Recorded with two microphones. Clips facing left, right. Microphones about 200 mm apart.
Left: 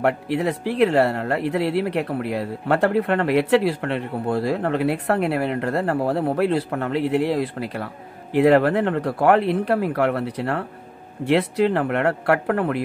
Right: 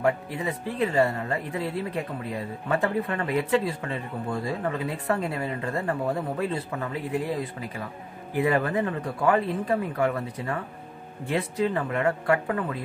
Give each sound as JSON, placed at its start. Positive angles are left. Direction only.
{"t": 0.0, "sound": "speech", "side_deg": 75}